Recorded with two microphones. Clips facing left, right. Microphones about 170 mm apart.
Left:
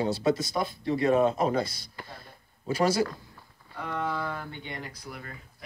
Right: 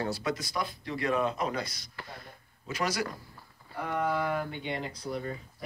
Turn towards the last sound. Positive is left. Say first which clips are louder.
# right 7 dB
turn(degrees=-30)  # may be behind; listen again after turning